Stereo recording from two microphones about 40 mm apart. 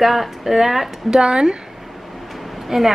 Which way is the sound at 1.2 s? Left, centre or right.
Right.